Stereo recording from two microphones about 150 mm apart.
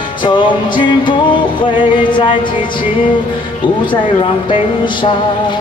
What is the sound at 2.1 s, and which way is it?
Music, 35° left (ahead or behind).